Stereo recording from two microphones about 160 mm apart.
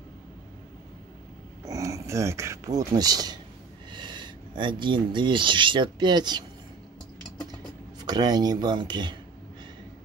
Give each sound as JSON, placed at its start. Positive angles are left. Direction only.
{"t": 1.7, "sound": "speech", "side_deg": -20}
{"t": 8.0, "sound": "speech", "side_deg": -25}